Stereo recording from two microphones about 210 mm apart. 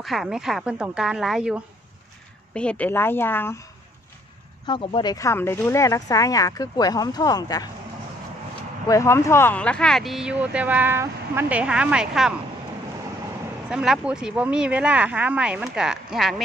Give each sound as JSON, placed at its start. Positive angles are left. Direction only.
{"t": 0.0, "sound": "speech", "side_deg": 0}
{"t": 4.6, "sound": "speech", "side_deg": 25}
{"t": 8.8, "sound": "speech", "side_deg": 15}
{"t": 13.7, "sound": "speech", "side_deg": -5}